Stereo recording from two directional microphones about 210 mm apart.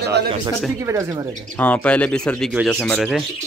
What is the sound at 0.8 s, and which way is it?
Speech, 15° right (ahead or behind).